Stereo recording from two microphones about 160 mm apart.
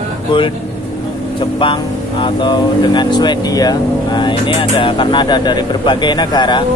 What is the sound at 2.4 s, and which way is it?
Speech, 30° left (ahead or behind).